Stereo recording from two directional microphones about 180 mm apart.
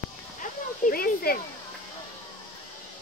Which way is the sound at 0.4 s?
50° left (ahead or behind).